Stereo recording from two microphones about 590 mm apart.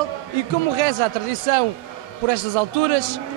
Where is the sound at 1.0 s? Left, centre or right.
Right.